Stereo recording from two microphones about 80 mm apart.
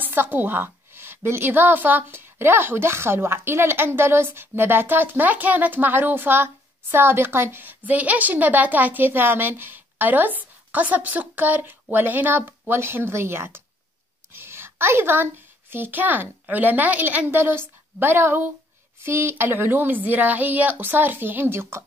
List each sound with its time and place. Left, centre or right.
0.0 s a woman's voice: right
14.3 s a sound: right
15.7 s a woman's voice: right